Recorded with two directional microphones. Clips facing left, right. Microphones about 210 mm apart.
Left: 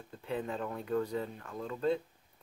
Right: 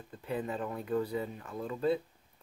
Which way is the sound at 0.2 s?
5° right (ahead or behind).